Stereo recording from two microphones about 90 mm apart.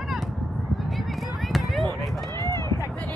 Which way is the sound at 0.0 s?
Centre (ahead or behind).